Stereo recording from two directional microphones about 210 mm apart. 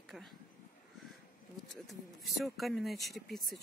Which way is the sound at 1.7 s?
Centre (ahead or behind).